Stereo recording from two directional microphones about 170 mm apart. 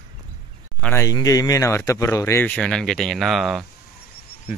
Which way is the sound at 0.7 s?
10° left (ahead or behind).